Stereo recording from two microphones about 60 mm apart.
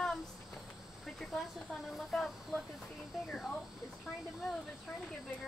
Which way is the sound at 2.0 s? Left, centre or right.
Centre.